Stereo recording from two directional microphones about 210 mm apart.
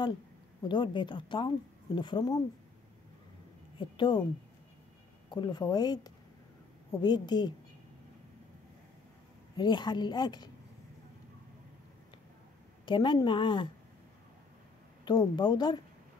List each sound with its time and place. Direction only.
0.7 s a woman's voice: 20° left (ahead or behind)
3.7 s a woman's voice: 20° left (ahead or behind)
5.3 s a woman's voice: 20° left (ahead or behind)
9.6 s a woman's voice: 20° left (ahead or behind)
12.8 s a woman's voice: 20° left (ahead or behind)
15.0 s a woman's voice: 20° left (ahead or behind)